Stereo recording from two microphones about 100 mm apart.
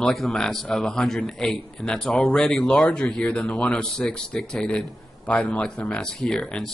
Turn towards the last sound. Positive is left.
turn(degrees=10)  # may be behind; listen again after turning